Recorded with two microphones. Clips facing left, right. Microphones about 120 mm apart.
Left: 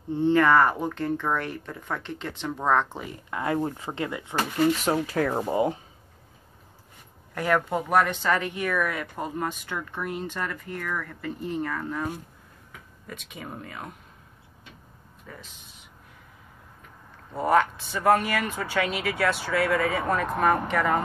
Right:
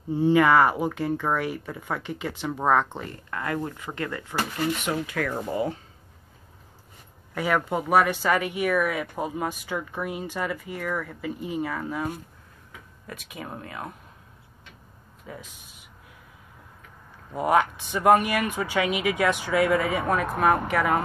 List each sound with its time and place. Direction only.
0.1 s speech: 5° right (ahead or behind)
3.3 s speech: 20° left (ahead or behind)
4.7 s speech: 35° left (ahead or behind)
7.3 s speech: 5° right (ahead or behind)
15.3 s speech: 10° right (ahead or behind)
17.3 s speech: 15° right (ahead or behind)
20.1 s speech: 5° right (ahead or behind)